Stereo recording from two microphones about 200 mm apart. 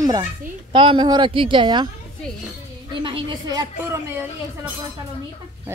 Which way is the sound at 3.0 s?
25° right (ahead or behind).